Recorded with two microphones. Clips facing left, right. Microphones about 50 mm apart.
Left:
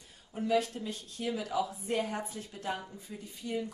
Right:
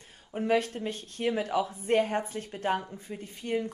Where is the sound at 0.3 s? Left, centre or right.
Right.